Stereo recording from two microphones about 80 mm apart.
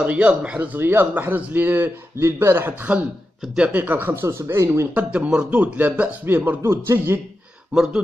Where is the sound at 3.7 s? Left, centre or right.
Right.